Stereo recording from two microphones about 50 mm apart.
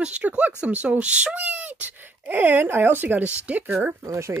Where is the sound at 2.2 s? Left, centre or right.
Right.